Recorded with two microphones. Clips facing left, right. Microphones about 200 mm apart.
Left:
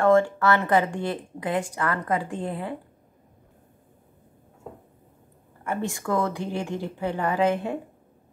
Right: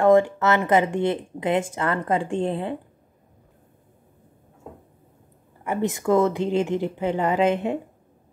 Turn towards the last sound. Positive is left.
turn(degrees=-20)  # may be behind; listen again after turning